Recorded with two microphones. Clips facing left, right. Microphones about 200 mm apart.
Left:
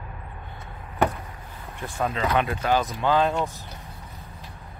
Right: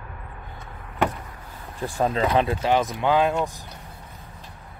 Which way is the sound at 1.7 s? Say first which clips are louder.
Right 4 dB; 35° right (ahead or behind).